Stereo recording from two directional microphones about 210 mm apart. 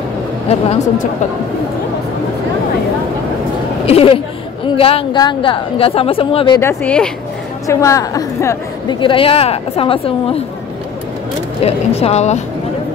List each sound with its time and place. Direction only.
0.5 s a woman's voice: 30° left (ahead or behind)
3.8 s a woman's voice: 25° left (ahead or behind)
6.6 s a woman's voice: 10° left (ahead or behind); by 10.4 s 25° left (ahead or behind)
11.6 s speech: 30° left (ahead or behind)